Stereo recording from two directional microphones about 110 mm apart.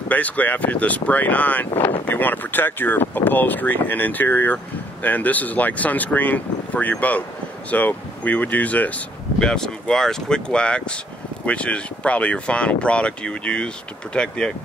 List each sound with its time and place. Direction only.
0.1 s speech: 15° left (ahead or behind)